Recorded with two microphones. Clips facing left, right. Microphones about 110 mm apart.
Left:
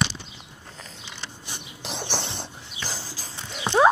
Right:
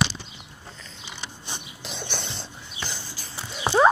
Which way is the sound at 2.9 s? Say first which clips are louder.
Left 2 dB; 90° left.